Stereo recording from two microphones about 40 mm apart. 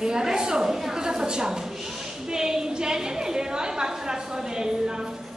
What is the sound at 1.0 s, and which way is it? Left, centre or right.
A woman's voice, centre.